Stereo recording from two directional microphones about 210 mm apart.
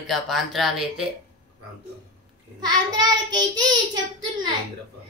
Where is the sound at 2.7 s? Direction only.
20° right (ahead or behind).